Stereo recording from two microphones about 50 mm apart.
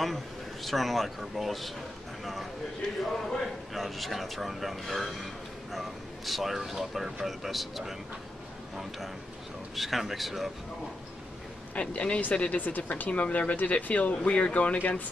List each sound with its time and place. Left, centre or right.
0.7 s a man's voice: centre
3.7 s a man's voice: centre
9.8 s a man's voice: centre
11.7 s speech: left